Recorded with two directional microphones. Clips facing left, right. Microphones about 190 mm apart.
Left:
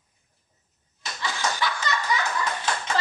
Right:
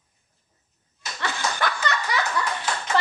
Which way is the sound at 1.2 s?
60° right (ahead or behind).